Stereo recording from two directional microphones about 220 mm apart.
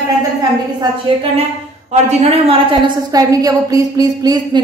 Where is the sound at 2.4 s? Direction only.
20° right (ahead or behind).